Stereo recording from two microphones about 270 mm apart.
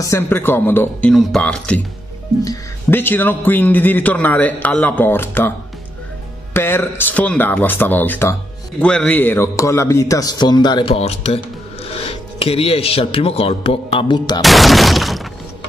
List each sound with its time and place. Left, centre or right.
0.0 s a man's voice: centre
6.5 s a man's voice: centre
14.4 s speech: centre